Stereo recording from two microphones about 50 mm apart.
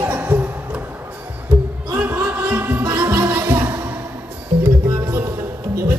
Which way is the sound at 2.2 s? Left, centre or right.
Right.